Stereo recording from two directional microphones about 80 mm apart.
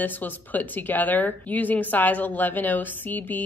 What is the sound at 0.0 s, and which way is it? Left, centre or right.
Speech, left.